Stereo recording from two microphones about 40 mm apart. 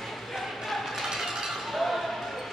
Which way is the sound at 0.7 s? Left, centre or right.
Centre.